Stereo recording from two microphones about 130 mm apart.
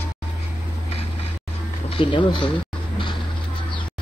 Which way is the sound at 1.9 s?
40° left (ahead or behind).